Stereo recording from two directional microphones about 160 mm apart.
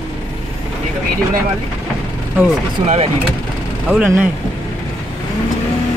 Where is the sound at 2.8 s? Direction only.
45° right (ahead or behind).